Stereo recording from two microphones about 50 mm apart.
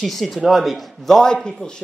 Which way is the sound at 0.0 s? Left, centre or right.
Centre.